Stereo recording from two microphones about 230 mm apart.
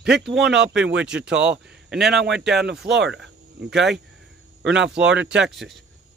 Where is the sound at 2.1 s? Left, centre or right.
Right.